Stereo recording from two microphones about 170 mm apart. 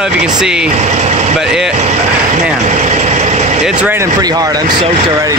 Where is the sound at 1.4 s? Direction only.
5° right (ahead or behind).